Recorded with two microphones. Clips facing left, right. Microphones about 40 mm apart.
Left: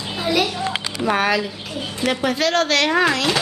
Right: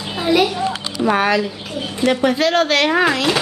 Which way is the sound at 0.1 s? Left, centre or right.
Centre.